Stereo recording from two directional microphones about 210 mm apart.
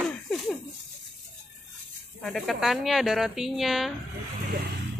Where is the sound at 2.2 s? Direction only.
Centre (ahead or behind).